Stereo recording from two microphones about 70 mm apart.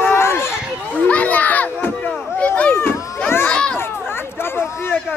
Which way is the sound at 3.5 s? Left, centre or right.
Centre.